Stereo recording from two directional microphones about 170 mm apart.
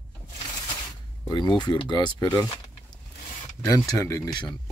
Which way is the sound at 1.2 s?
25° left (ahead or behind).